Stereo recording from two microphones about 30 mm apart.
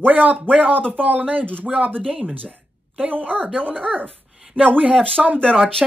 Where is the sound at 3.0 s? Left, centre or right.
Right.